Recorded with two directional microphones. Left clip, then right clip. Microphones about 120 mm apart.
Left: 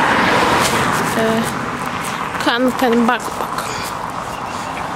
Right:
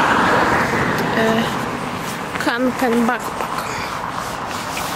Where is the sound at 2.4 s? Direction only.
15° left (ahead or behind).